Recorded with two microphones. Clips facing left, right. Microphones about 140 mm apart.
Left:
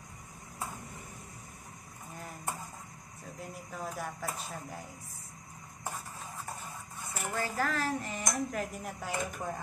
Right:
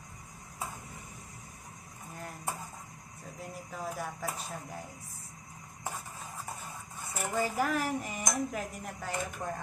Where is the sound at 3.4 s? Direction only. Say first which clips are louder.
Right 1 dB; centre (ahead or behind).